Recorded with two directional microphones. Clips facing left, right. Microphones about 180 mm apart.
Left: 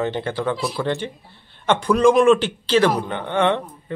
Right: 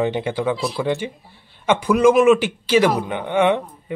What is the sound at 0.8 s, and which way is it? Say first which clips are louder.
Speech: right 2 dB; 10° right (ahead or behind).